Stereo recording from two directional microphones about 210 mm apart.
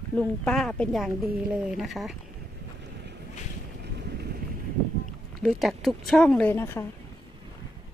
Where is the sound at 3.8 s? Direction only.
50° right (ahead or behind).